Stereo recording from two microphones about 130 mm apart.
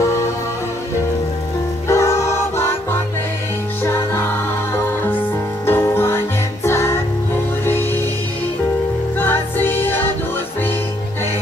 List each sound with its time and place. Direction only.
1.9 s music: 20° left (ahead or behind)
5.7 s music: 20° left (ahead or behind)
9.2 s music: 15° left (ahead or behind)